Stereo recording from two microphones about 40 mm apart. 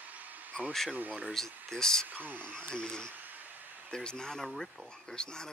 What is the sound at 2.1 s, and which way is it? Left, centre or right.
Speech, right.